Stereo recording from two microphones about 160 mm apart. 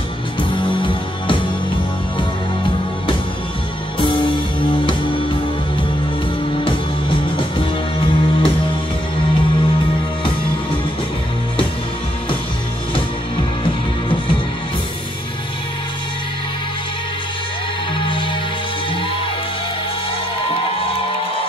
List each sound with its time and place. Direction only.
0.4 s music: 30° left (ahead or behind)
4.0 s music: 30° left (ahead or behind)
17.9 s music: 30° left (ahead or behind)